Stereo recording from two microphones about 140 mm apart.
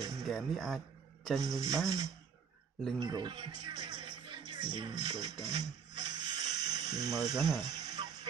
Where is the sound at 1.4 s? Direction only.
25° right (ahead or behind).